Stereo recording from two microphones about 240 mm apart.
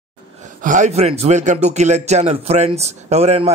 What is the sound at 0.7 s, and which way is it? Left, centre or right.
A man's voice, right.